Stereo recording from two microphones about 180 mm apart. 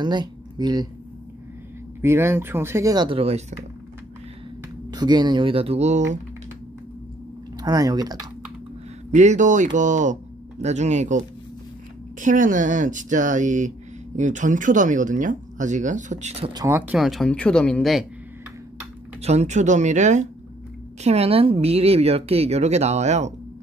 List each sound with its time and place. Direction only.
0.0 s speech: 25° right (ahead or behind)
2.0 s speech: 15° right (ahead or behind); by 3.5 s 35° right (ahead or behind)
4.9 s speech: 25° right (ahead or behind)
7.5 s speech: 20° right (ahead or behind)
9.1 s speech: 40° right (ahead or behind)
16.5 s speech: 15° right (ahead or behind)
17.0 s speech: centre (ahead or behind)
19.2 s speech: 40° right (ahead or behind)